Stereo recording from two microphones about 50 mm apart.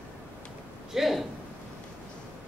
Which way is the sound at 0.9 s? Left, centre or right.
Centre.